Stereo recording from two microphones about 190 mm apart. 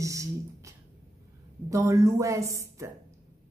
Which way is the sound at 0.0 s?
15° right (ahead or behind).